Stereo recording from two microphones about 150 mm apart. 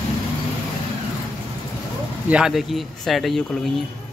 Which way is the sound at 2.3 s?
5° right (ahead or behind).